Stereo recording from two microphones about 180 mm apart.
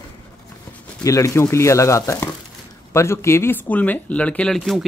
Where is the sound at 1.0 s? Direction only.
15° left (ahead or behind).